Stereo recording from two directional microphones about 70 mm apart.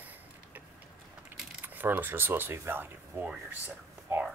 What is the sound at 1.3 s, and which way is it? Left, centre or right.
Keys jangling, right.